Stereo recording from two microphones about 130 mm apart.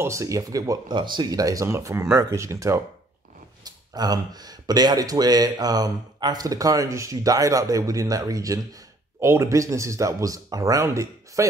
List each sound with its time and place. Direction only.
0.0 s speech: 20° right (ahead or behind)